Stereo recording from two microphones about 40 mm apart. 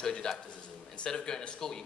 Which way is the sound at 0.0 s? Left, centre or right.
Centre.